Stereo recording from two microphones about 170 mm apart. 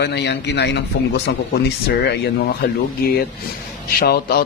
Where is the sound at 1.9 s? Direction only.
70° left (ahead or behind).